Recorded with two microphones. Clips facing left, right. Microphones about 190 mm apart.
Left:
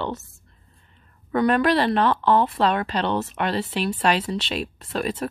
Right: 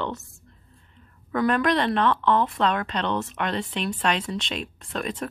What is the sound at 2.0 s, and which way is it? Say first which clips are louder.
Speech: left 2 dB; 35° left (ahead or behind).